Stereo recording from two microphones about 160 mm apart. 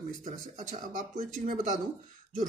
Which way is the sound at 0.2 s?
50° right (ahead or behind).